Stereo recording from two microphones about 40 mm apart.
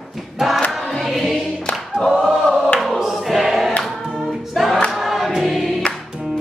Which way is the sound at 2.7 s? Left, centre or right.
Centre.